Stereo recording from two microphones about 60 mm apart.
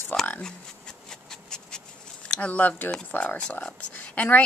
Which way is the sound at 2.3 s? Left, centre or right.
Left.